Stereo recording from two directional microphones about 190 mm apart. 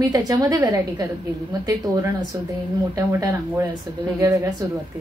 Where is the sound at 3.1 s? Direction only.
15° right (ahead or behind).